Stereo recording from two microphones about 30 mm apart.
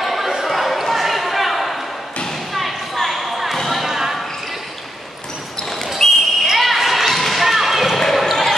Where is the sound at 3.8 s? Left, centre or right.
Centre.